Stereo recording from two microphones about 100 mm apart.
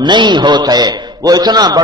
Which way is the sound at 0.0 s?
50° right (ahead or behind).